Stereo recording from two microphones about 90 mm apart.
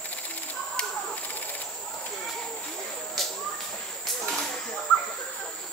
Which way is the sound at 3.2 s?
Centre (ahead or behind).